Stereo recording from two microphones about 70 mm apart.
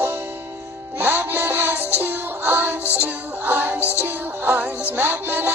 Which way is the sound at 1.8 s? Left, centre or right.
Left.